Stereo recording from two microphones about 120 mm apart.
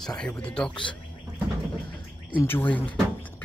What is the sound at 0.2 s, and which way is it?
Speech, 5° left (ahead or behind).